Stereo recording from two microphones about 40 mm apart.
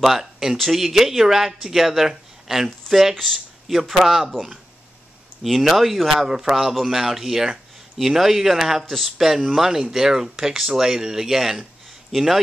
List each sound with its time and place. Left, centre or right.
0.0 s speech: centre
5.4 s speech: centre
6.5 s speech: centre